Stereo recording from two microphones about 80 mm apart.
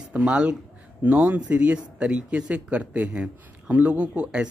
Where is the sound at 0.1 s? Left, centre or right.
Centre.